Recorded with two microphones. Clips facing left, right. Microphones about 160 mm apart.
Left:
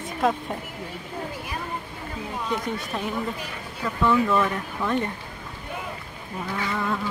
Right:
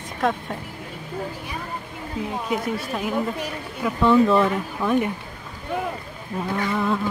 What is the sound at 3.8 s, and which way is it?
Speech, 20° right (ahead or behind).